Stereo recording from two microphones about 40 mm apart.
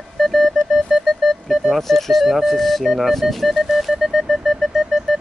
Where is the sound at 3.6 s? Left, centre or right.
Centre.